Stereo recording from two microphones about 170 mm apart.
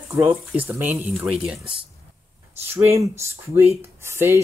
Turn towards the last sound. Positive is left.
turn(degrees=-15)  # may be behind; listen again after turning